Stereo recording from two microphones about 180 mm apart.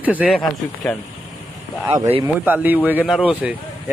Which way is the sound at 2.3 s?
10° right (ahead or behind).